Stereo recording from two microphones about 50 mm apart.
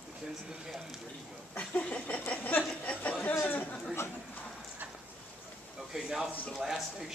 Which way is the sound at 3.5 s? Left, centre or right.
Left.